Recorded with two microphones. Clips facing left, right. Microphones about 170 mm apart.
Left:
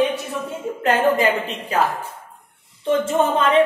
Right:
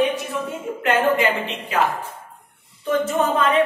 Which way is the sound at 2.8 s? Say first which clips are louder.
Left 2 dB; 30° left (ahead or behind).